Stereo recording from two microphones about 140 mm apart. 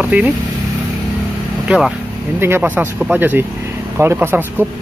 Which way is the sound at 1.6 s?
5° right (ahead or behind).